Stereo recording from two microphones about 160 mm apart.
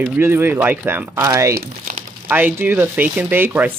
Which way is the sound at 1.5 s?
75° right (ahead or behind).